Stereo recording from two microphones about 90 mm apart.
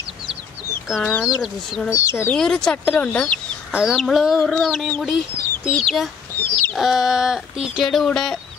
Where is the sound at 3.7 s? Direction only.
5° right (ahead or behind).